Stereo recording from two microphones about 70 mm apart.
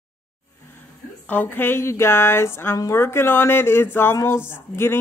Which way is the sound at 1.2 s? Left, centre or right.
Left.